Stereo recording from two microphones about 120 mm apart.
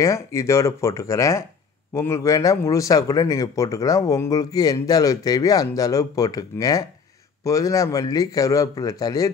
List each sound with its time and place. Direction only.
0.0 s speech: 25° left (ahead or behind)